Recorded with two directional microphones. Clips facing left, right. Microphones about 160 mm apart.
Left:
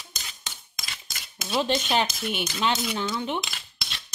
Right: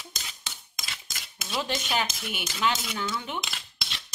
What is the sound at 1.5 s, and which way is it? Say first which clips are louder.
Speech: left 5 dB; 25° left (ahead or behind).